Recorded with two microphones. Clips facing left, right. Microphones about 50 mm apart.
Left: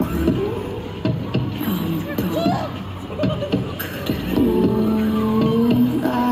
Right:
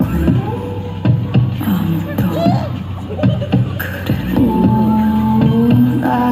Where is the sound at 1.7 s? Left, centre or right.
Right.